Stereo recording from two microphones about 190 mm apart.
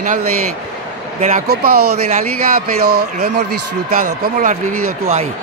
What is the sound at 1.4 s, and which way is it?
Speech, 60° right (ahead or behind).